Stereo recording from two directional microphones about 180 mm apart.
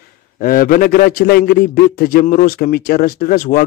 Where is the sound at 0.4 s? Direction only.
50° left (ahead or behind).